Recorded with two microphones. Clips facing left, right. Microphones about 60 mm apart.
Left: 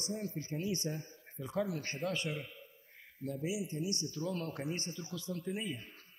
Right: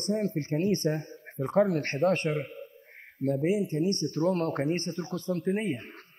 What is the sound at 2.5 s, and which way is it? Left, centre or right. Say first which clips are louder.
A man's voice: right 12 dB; right.